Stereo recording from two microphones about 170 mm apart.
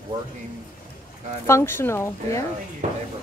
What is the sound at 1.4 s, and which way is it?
Speech, 15° left (ahead or behind).